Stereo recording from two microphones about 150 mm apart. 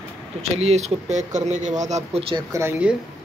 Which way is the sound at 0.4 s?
45° right (ahead or behind).